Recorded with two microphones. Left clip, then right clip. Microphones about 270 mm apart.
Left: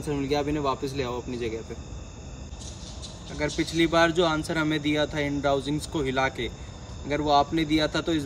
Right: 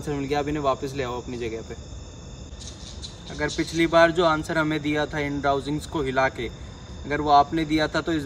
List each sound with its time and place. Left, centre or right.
0.0 s speech: centre
3.3 s speech: centre